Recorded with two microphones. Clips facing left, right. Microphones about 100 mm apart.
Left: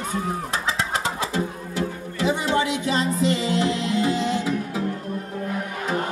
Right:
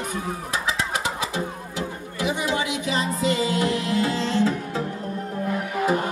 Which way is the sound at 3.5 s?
20° left (ahead or behind).